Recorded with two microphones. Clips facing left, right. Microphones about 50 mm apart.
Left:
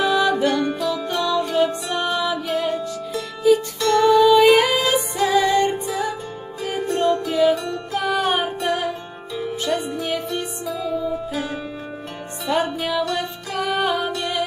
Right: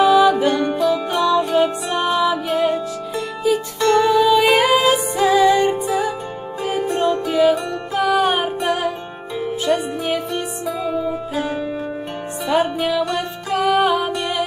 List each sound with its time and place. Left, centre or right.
0.0 s music: centre
3.8 s music: right
4.1 s music: centre
8.5 s music: right
9.7 s music: centre
12.4 s music: centre
13.0 s music: right
13.6 s music: centre
14.1 s music: right